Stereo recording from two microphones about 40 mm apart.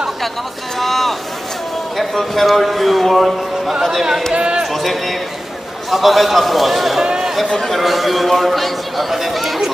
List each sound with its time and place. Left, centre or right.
0.7 s boat: centre
2.0 s a man's voice: centre
4.3 s speech: right
4.6 s a man's voice: centre
7.0 s a sound: centre
7.5 s a man's voice: centre